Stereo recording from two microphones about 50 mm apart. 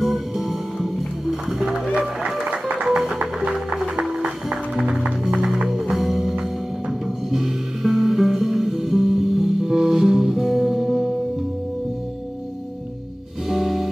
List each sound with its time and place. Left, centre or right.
0.0 s music: centre
5.5 s music: centre
13.5 s music: centre